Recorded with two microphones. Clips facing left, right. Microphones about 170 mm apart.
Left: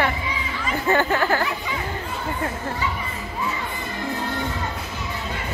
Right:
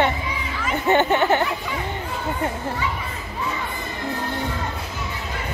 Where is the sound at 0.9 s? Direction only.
20° right (ahead or behind).